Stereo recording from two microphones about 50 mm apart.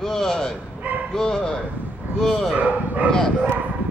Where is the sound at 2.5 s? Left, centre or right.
Right.